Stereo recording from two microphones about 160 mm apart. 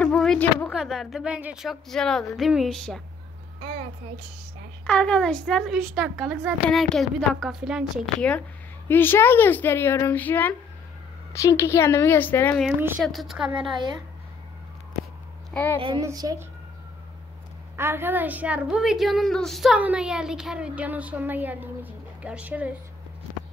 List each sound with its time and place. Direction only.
0.0 s a sound: 5° left (ahead or behind)
0.7 s speech: centre (ahead or behind)
4.8 s speech: 5° left (ahead or behind)
8.8 s speech: 15° left (ahead or behind)
13.0 s speech: centre (ahead or behind)
15.5 s a child's voice: 10° left (ahead or behind)
16.0 s a woman's voice: 20° right (ahead or behind)
17.7 s a woman's voice: 15° right (ahead or behind)